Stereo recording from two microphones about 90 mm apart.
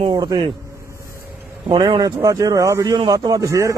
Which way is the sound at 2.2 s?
40° right (ahead or behind).